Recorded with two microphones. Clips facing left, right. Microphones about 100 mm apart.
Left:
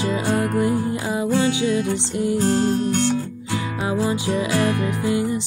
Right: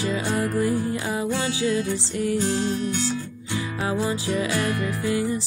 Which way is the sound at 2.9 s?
70° left (ahead or behind).